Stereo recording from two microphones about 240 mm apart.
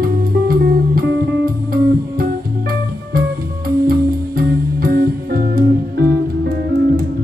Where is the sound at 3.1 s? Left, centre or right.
Right.